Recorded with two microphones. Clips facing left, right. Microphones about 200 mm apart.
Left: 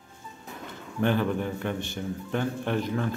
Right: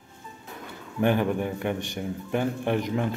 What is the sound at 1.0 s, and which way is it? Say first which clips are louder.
A man's voice: right 2 dB; 15° right (ahead or behind).